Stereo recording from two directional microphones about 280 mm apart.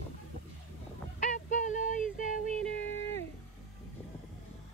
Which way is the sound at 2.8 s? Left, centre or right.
Left.